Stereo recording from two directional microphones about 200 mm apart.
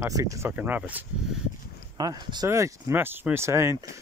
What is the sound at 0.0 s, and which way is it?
Speech, 15° right (ahead or behind).